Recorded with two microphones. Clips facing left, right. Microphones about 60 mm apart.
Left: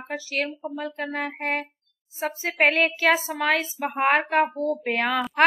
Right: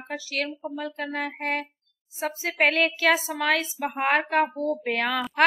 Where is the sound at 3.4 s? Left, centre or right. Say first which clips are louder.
Left 1 dB; centre.